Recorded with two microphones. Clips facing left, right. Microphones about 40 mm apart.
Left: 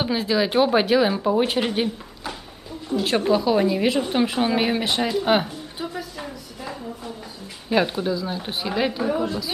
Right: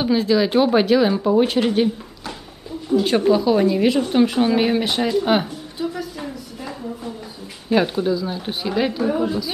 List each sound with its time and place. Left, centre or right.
0.0 s a woman's voice: centre
5.9 s a sound: centre
7.7 s a woman's voice: centre